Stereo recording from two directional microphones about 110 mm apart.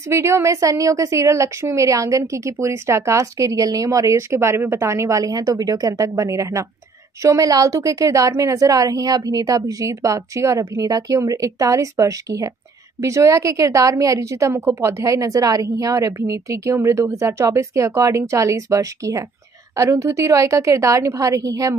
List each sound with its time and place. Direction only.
0.1 s a woman's voice: 25° right (ahead or behind)